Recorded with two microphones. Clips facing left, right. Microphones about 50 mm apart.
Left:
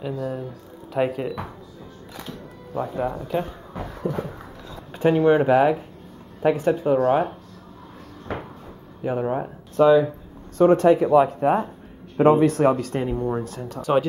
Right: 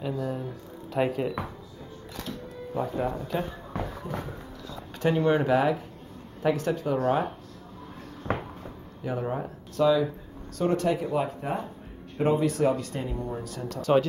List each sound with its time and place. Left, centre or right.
0.0 s speech: centre
2.1 s music: centre
3.2 s speech: centre
4.1 s speech: left
4.9 s speech: centre
9.0 s speech: left
13.7 s speech: centre